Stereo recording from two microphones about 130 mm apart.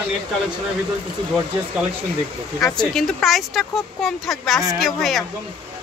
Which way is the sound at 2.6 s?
5° left (ahead or behind).